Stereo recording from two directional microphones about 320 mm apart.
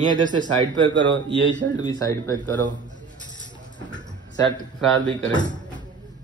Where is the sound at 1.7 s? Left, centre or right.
Centre.